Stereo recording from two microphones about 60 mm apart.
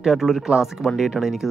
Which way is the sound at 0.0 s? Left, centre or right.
Centre.